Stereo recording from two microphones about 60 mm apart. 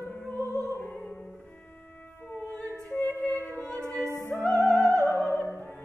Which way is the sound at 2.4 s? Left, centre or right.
Left.